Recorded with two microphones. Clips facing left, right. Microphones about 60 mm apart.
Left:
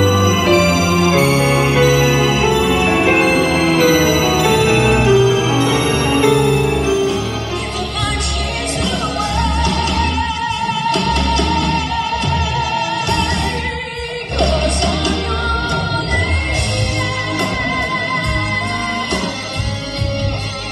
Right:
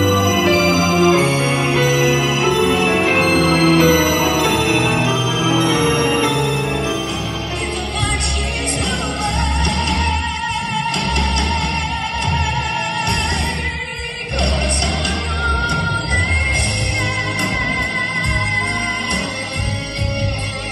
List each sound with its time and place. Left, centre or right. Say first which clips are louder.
0.2 s music: left 2 dB; left